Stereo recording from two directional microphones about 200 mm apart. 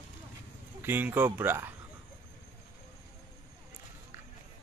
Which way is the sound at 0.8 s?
10° right (ahead or behind).